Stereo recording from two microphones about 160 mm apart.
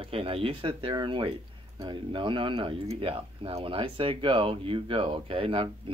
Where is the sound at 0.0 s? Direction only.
35° right (ahead or behind).